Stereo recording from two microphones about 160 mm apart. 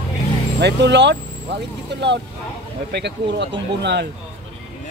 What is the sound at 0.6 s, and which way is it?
Speech, 90° right.